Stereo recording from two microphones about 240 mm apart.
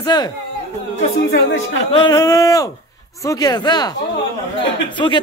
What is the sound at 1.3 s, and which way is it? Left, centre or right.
Speech, left.